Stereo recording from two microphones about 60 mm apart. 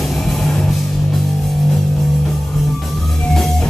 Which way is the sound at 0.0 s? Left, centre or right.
Centre.